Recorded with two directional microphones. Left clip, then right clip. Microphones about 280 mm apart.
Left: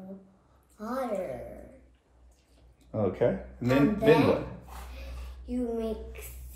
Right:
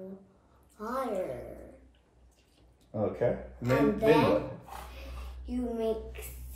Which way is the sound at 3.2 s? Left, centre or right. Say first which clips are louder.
Left 2 dB; left.